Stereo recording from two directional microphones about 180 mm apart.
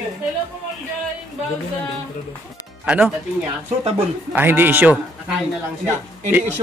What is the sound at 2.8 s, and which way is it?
Speech, 5° right (ahead or behind).